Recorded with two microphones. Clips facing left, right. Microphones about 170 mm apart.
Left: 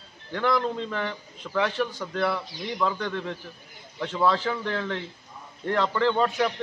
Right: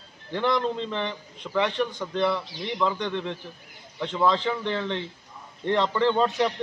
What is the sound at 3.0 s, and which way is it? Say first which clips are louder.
A man's voice: right 1 dB; 20° right (ahead or behind).